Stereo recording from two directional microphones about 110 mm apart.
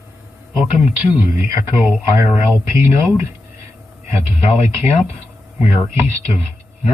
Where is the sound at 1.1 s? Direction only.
20° right (ahead or behind).